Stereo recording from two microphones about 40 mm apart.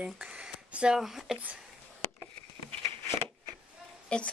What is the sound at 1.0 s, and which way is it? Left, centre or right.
Speech, centre.